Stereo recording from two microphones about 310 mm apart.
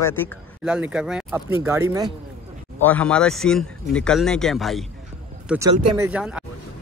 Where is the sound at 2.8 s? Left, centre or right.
Centre.